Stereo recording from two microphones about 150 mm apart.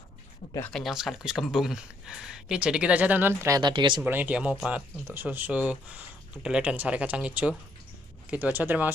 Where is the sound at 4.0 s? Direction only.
10° right (ahead or behind).